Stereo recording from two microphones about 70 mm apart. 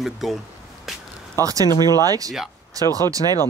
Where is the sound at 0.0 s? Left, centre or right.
Centre.